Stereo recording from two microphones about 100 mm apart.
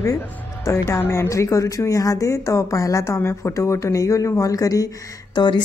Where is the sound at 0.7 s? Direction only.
25° left (ahead or behind).